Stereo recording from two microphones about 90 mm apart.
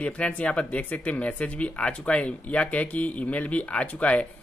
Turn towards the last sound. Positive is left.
turn(degrees=15)  # may be behind; listen again after turning